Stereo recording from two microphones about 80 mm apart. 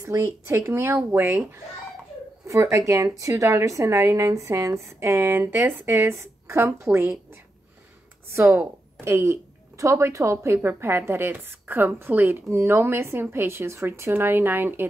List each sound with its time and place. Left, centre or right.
0.0 s a woman's voice: right
2.4 s a woman's voice: right
8.4 s a woman's voice: right
9.0 s a woman's voice: right